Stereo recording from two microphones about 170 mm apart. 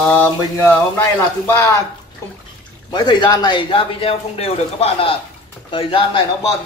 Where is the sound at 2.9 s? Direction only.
25° left (ahead or behind).